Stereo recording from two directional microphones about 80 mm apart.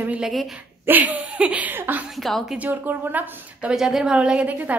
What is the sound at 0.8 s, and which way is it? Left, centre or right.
A woman's voice, right.